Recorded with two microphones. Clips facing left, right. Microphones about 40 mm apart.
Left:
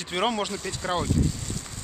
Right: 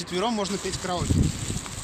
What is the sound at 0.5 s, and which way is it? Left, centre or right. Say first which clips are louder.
Speech: right 2 dB; right.